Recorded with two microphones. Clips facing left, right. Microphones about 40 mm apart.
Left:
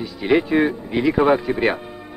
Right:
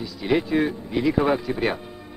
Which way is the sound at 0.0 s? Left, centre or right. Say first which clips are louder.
Left 5 dB; left.